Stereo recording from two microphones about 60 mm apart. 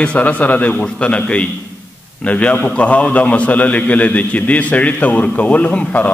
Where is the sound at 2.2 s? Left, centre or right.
Left.